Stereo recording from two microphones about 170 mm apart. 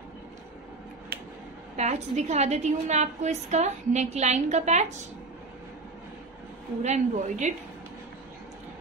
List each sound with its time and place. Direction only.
1.8 s a woman's voice: 40° right (ahead or behind)
6.8 s a woman's voice: 40° right (ahead or behind)